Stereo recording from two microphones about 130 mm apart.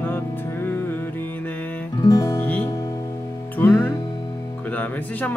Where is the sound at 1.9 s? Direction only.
30° left (ahead or behind).